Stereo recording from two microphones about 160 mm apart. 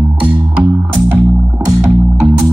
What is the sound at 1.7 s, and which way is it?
Music, 10° right (ahead or behind).